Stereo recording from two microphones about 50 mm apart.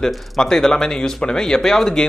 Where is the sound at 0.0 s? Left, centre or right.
Centre.